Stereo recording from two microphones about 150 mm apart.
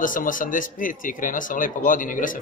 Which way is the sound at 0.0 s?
65° left (ahead or behind).